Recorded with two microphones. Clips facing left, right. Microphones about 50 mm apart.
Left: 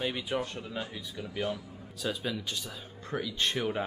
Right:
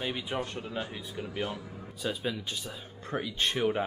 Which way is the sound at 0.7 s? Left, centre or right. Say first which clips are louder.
Right 2 dB; centre.